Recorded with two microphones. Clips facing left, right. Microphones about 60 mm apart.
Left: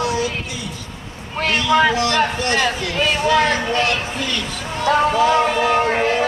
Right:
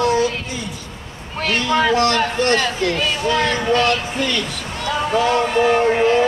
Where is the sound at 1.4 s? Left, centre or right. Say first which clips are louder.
Left 2 dB; centre.